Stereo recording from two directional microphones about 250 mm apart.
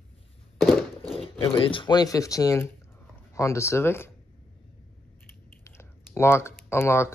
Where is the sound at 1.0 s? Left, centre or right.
Left.